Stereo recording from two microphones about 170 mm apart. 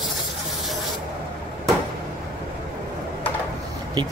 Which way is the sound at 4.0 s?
20° right (ahead or behind).